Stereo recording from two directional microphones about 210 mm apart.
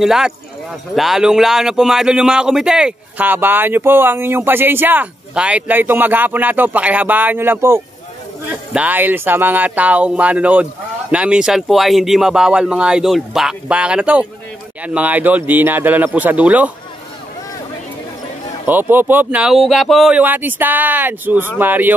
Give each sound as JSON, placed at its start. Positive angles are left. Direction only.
{"t": 0.0, "sound": "speech", "side_deg": 0}
{"t": 18.7, "sound": "speech", "side_deg": -10}